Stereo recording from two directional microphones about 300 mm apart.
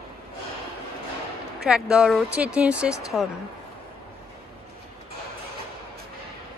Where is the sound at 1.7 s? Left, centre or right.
Centre.